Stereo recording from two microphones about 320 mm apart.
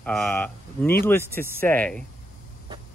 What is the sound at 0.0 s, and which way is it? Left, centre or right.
Speech, centre.